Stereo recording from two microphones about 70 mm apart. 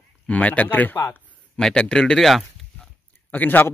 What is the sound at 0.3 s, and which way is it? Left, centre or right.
Speech, left.